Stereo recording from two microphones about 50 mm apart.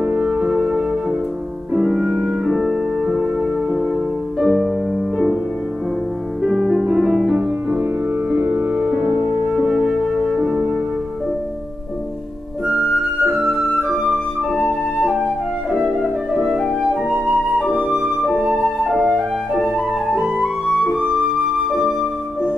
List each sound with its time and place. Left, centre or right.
0.0 s music: centre
6.4 s music: centre
6.8 s music: centre
8.3 s music: right
9.5 s music: centre
10.1 s music: centre
10.4 s music: centre
12.6 s flute: centre
14.6 s flute: centre
15.7 s music: centre
18.5 s flute: centre
20.6 s flute: centre